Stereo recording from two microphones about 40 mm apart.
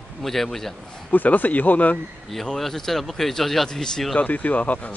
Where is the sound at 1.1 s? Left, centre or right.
Left.